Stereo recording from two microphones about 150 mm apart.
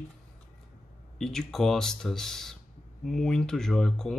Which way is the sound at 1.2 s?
5° left (ahead or behind).